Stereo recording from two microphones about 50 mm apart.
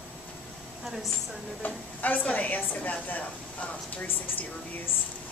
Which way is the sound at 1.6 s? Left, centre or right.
Left.